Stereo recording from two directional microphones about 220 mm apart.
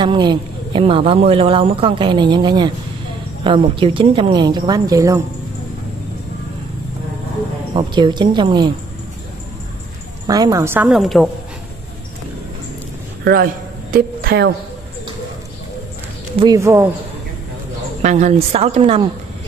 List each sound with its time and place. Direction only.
0.0 s a man's voice: 20° right (ahead or behind)
7.7 s a man's voice: 20° right (ahead or behind)
10.2 s a woman's voice: 15° right (ahead or behind); by 11.2 s centre (ahead or behind)
13.2 s a man's voice: 45° right (ahead or behind)
16.3 s a woman's voice: 15° right (ahead or behind)
18.0 s a man's voice: 30° right (ahead or behind)